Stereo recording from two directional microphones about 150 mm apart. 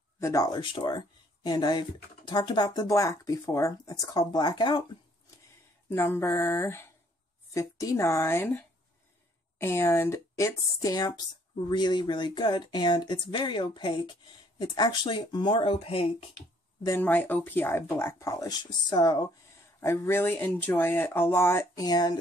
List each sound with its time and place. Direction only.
0.2 s speech: 25° left (ahead or behind)
5.9 s speech: 15° left (ahead or behind); by 16.3 s 40° left (ahead or behind)
17.0 s speech: 10° left (ahead or behind); by 19.2 s 30° left (ahead or behind)
19.8 s speech: 15° left (ahead or behind)